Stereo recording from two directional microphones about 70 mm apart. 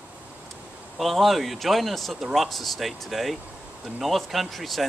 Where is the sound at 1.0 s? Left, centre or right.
Centre.